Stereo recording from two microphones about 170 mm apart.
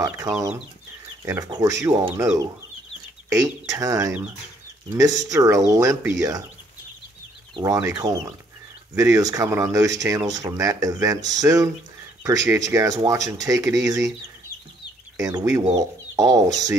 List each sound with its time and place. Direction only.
0.0 s speech: 20° right (ahead or behind)
7.5 s speech: 20° right (ahead or behind)
15.1 s speech: 20° right (ahead or behind)
15.7 s chicken: 20° right (ahead or behind)